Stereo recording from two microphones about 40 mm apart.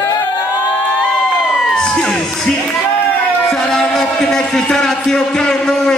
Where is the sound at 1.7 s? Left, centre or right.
Centre.